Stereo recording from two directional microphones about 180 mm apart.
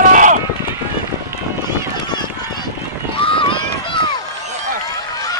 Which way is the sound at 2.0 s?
25° left (ahead or behind).